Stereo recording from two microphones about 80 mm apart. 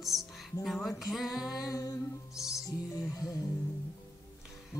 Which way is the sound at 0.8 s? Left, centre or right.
Centre.